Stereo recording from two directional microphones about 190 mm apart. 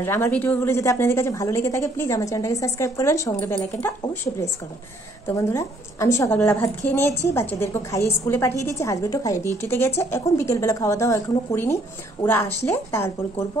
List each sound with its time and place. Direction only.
0.0 s a woman's voice: 10° left (ahead or behind)